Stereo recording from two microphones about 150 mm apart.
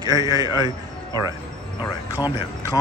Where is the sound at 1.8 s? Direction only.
25° left (ahead or behind).